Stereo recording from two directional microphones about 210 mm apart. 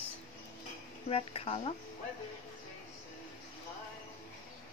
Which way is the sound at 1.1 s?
30° left (ahead or behind).